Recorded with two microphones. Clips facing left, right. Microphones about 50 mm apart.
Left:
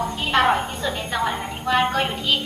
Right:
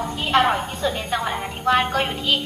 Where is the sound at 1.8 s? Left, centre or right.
Centre.